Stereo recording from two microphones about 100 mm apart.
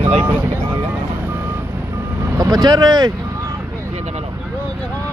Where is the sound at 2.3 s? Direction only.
40° right (ahead or behind).